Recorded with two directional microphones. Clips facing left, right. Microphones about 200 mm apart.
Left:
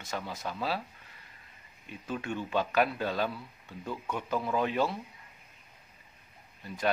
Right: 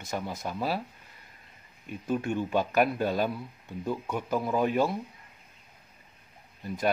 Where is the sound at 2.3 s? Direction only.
15° right (ahead or behind).